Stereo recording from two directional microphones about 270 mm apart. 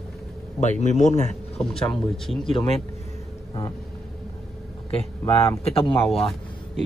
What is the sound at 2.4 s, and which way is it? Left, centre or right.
Speech, centre.